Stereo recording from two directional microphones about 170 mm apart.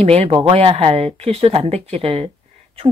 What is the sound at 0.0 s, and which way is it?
Speech, 35° right (ahead or behind).